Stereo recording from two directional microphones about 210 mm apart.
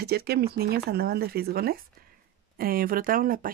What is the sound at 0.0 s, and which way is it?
Speech, 50° right (ahead or behind).